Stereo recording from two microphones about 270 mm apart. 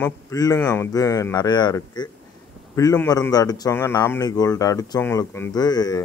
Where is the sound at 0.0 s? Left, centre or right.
Centre.